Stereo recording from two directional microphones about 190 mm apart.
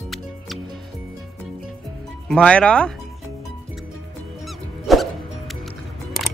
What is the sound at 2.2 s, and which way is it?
Speech, 5° left (ahead or behind).